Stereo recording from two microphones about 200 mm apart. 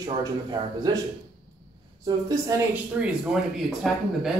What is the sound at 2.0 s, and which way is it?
Speech, 15° right (ahead or behind).